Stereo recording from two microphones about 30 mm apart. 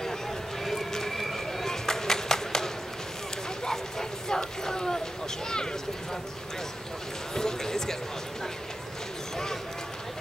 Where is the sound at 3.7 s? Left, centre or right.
Left.